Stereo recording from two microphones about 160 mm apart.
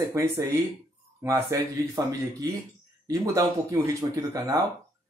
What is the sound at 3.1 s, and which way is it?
Speech, 20° right (ahead or behind).